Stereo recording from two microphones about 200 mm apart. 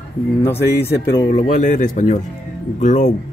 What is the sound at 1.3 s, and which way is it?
Speech, 40° left (ahead or behind).